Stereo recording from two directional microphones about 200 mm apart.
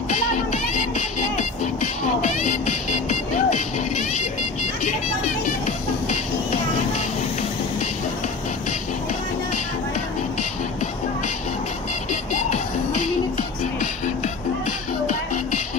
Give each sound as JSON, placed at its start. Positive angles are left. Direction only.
{"t": 0.1, "sound": "music", "side_deg": 40}
{"t": 13.0, "sound": "music", "side_deg": 40}